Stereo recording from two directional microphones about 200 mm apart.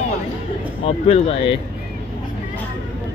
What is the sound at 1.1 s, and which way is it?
Speech, 30° left (ahead or behind).